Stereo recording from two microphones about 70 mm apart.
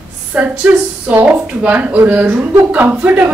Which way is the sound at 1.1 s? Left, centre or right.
Right.